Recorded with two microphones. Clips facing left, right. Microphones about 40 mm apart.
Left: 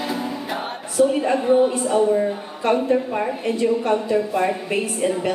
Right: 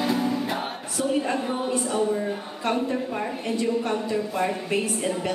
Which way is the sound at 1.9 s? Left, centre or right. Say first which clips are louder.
Left 8 dB; centre.